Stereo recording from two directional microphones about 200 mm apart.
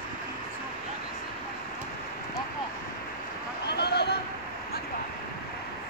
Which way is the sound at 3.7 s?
55° left (ahead or behind).